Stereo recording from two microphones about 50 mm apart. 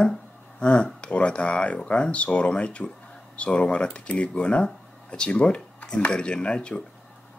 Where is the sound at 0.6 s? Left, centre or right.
Left.